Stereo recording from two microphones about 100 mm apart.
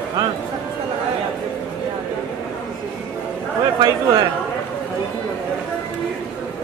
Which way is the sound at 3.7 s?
45° right (ahead or behind).